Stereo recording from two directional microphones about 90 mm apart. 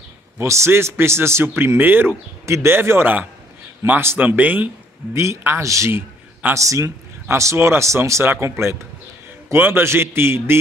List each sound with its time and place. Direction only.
0.4 s a man's voice: 30° right (ahead or behind)
5.1 s a man's voice: 30° right (ahead or behind)